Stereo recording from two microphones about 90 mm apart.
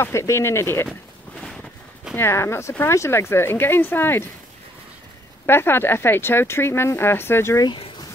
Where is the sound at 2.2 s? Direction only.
30° left (ahead or behind).